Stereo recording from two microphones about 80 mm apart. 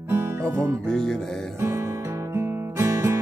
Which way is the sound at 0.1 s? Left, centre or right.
Right.